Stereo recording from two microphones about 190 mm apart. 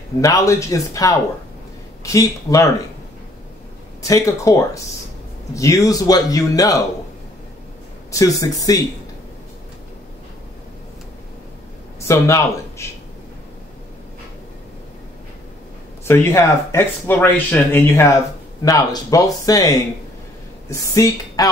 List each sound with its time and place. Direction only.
0.2 s speech: 15° left (ahead or behind)
4.1 s a man's voice: 15° left (ahead or behind)
8.1 s speech: 15° left (ahead or behind)
12.1 s speech: 15° left (ahead or behind)
16.1 s speech: 15° left (ahead or behind)
20.9 s speech: 20° left (ahead or behind)